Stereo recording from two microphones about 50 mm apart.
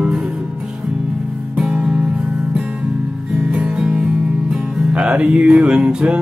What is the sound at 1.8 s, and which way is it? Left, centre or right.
Music, centre.